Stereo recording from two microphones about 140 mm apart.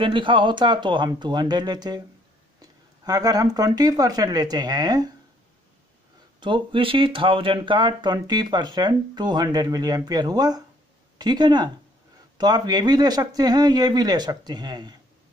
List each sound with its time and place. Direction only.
0.0 s speech: 35° right (ahead or behind)
6.4 s speech: 35° right (ahead or behind)